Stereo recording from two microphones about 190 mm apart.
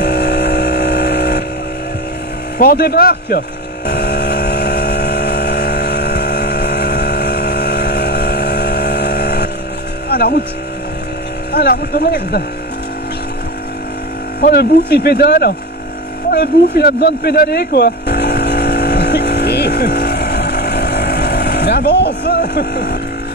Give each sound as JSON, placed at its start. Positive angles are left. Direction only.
{"t": 0.0, "sound": "vehicle", "side_deg": 60}
{"t": 2.6, "sound": "vehicle", "side_deg": 50}
{"t": 10.0, "sound": "speech", "side_deg": 55}
{"t": 11.5, "sound": "speech", "side_deg": 55}
{"t": 14.4, "sound": "speech", "side_deg": 55}
{"t": 16.3, "sound": "vehicle", "side_deg": 55}